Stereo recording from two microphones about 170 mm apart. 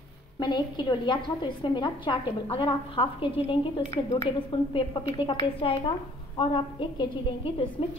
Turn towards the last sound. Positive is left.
turn(degrees=30)  # may be behind; listen again after turning